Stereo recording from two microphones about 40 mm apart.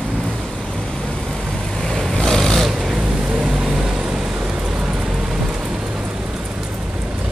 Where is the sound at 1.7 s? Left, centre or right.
Centre.